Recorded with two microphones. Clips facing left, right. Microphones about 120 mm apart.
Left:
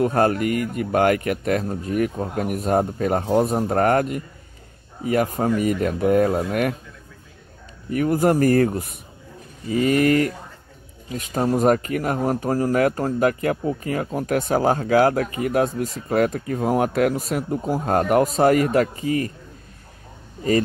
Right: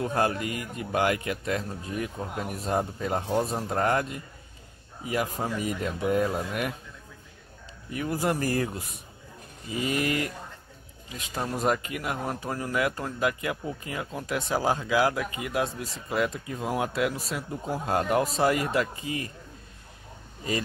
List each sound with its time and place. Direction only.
0.0 s speech: 60° left (ahead or behind)
7.9 s speech: 50° left (ahead or behind)